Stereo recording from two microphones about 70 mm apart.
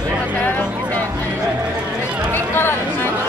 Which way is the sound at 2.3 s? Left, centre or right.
Left.